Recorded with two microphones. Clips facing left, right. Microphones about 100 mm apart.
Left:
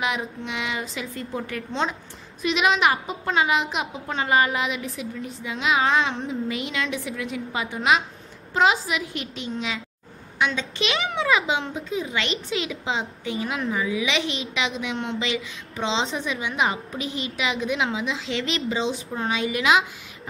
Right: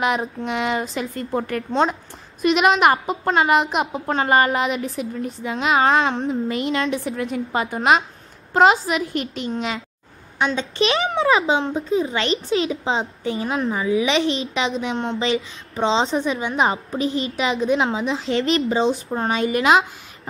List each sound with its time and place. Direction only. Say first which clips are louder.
0.0 s a woman's voice: right 6 dB; 40° right (ahead or behind)
10.4 s a child's voice: right 5 dB; 35° right (ahead or behind)